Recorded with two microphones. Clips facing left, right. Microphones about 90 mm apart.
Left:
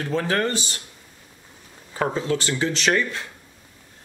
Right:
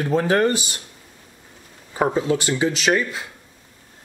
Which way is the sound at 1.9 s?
15° right (ahead or behind).